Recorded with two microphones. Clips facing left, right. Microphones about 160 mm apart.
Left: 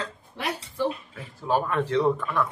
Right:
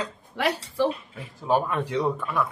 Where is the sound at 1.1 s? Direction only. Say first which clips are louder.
Right 2 dB; 15° right (ahead or behind).